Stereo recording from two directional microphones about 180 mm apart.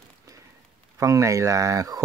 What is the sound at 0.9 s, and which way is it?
Speech, 15° right (ahead or behind).